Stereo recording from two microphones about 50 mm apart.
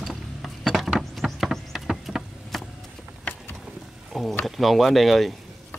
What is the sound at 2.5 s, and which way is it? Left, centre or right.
Vehicle, centre.